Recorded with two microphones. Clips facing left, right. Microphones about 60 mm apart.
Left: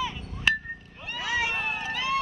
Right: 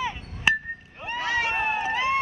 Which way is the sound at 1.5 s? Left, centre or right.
Right.